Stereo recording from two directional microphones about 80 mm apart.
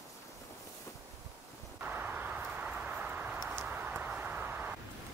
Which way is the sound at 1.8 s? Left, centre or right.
Right.